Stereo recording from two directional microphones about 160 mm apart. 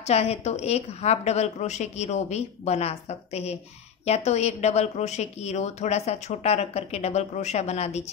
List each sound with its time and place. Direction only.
0.0 s speech: 40° left (ahead or behind)